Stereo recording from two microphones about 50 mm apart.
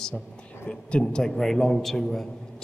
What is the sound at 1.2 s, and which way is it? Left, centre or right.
A man's voice, centre.